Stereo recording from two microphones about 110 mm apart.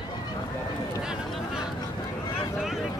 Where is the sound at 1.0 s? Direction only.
5° right (ahead or behind).